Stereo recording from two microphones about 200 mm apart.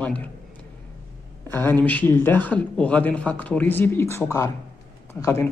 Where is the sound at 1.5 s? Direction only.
10° left (ahead or behind).